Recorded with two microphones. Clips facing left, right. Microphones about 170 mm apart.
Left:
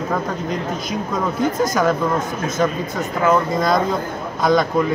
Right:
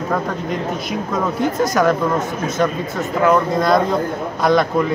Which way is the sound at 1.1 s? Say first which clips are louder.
Right 1 dB; centre (ahead or behind).